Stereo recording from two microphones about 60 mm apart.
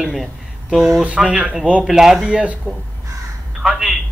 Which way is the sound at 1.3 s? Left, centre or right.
Right.